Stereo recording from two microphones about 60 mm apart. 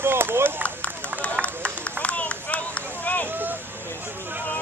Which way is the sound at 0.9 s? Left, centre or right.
Right.